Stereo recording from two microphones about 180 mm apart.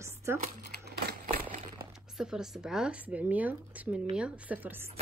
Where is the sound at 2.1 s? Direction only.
5° right (ahead or behind).